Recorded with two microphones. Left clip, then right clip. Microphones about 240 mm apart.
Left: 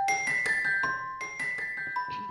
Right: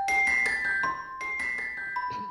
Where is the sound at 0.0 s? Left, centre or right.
Centre.